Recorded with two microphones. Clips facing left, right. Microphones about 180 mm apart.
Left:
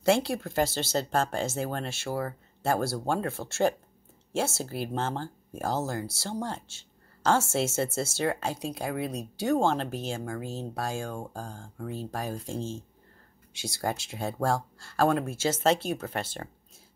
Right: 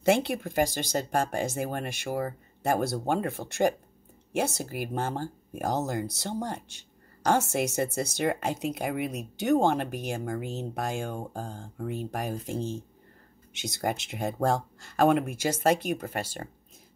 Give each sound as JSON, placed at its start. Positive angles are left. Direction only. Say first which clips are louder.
{"t": 0.0, "sound": "speech", "louder": "even", "side_deg": -20}